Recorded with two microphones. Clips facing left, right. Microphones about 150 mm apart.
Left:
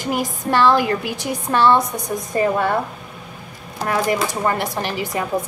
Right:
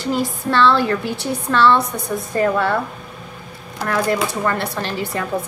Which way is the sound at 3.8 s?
20° left (ahead or behind).